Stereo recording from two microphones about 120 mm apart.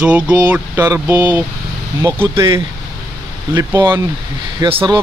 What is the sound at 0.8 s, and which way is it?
Speech, 25° right (ahead or behind).